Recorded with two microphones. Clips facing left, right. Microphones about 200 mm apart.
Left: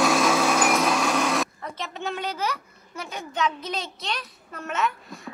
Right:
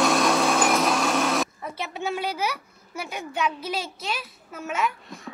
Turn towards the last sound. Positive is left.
turn(degrees=0)  # may be behind; listen again after turning